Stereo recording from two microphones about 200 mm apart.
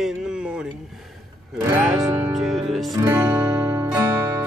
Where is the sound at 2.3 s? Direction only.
Centre (ahead or behind).